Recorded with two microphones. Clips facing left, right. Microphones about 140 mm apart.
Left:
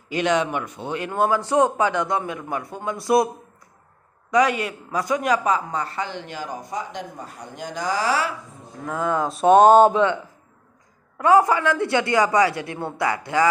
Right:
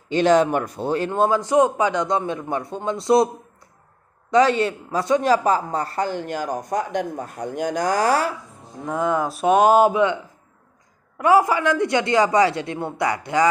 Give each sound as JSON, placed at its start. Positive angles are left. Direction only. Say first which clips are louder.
{"t": 0.1, "sound": "a man's voice", "louder": "right 5 dB", "side_deg": -35}
{"t": 4.3, "sound": "speech", "louder": "right 3 dB", "side_deg": -30}
{"t": 8.8, "sound": "speech", "louder": "right 2 dB", "side_deg": -20}
{"t": 9.3, "sound": "speech", "louder": "left 4 dB", "side_deg": 0}
{"t": 11.4, "sound": "a man's voice", "louder": "right 1 dB", "side_deg": -15}